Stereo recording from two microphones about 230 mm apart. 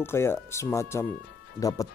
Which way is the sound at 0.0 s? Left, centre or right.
Centre.